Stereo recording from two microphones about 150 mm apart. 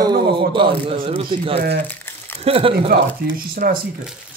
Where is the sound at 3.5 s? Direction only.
70° right (ahead or behind).